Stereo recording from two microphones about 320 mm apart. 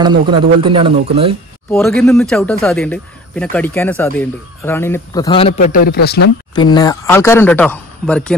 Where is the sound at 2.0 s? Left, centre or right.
Centre; by 6.2 s left.